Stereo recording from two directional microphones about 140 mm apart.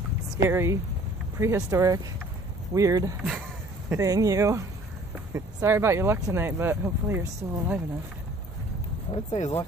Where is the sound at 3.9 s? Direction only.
25° right (ahead or behind).